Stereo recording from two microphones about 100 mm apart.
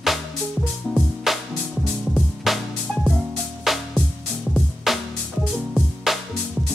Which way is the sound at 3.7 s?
Centre (ahead or behind).